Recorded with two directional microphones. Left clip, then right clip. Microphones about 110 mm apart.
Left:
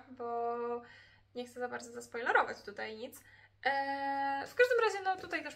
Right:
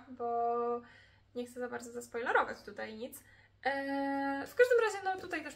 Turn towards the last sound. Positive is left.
turn(degrees=15)  # may be behind; listen again after turning